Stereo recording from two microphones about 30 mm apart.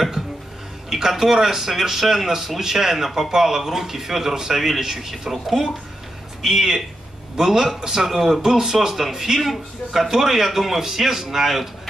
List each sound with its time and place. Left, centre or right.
0.8 s a man's voice: centre